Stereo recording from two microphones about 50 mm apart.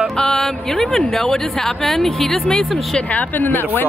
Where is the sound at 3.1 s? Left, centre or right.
Left.